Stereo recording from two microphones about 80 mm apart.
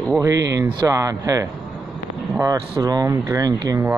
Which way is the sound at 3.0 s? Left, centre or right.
Right.